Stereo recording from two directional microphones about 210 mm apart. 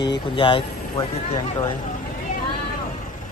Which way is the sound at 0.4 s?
25° left (ahead or behind).